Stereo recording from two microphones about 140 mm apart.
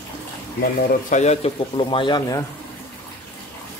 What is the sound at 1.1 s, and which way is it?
Speech, 55° left (ahead or behind).